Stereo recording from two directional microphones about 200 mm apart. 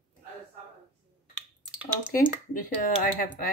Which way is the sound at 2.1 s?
45° left (ahead or behind).